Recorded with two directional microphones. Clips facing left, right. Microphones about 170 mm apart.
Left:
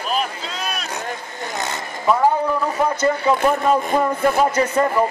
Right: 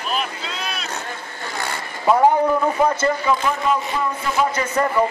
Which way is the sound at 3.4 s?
45° left (ahead or behind).